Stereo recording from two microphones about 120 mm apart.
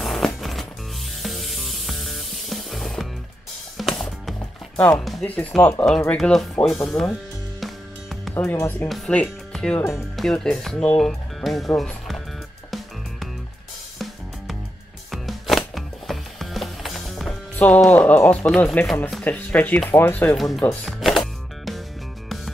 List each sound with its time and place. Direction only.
0.0 s music: centre (ahead or behind)
4.7 s speech: 10° left (ahead or behind)
5.9 s speech: 5° left (ahead or behind)
7.6 s music: centre (ahead or behind)
8.8 s speech: centre (ahead or behind)
9.8 s speech: 25° left (ahead or behind)
10.1 s speech: 5° left (ahead or behind)
15.0 s music: centre (ahead or behind)
17.6 s speech: 10° left (ahead or behind)
20.3 s speech: centre (ahead or behind)